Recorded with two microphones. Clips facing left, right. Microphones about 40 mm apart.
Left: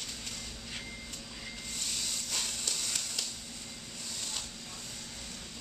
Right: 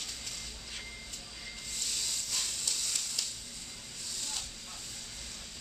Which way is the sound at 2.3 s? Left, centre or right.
Left.